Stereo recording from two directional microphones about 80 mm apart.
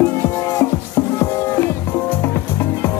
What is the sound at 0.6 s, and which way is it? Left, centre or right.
Music, left.